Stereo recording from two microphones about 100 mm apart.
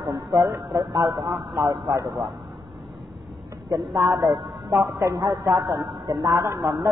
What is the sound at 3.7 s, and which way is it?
Speech, 30° right (ahead or behind).